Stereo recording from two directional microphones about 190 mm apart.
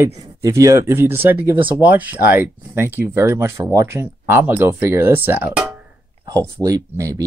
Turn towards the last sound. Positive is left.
turn(degrees=-15)  # may be behind; listen again after turning